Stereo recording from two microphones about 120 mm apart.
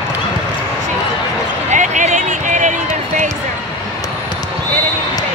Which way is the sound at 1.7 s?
90° right.